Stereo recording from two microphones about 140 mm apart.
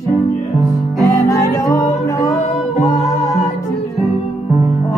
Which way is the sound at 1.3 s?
25° left (ahead or behind).